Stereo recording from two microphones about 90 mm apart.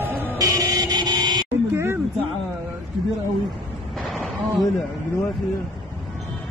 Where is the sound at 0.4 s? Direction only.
40° right (ahead or behind).